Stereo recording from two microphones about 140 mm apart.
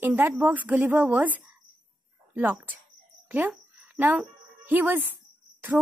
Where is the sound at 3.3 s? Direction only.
10° right (ahead or behind).